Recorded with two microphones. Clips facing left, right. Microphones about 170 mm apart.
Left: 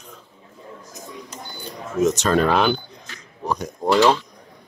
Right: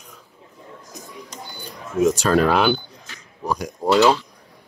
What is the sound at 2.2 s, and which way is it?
Speech, 5° right (ahead or behind).